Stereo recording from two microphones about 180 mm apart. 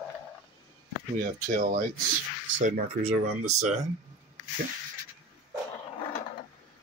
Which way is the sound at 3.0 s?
40° right (ahead or behind).